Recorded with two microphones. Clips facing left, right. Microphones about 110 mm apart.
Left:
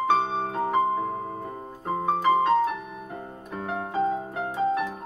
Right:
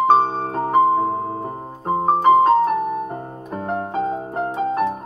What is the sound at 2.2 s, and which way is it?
Piano, 50° right (ahead or behind).